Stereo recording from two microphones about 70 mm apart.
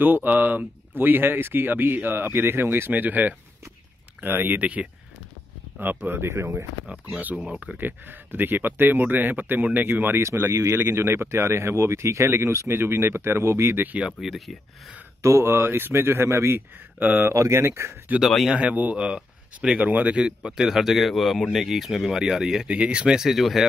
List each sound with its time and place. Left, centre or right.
0.0 s speech: right
5.8 s speech: right
7.3 s speech: centre
10.2 s speech: right
13.9 s speech: centre
15.2 s speech: right
17.3 s speech: right
18.5 s speech: centre